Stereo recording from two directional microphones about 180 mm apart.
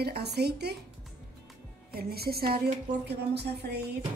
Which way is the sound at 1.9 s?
60° right (ahead or behind).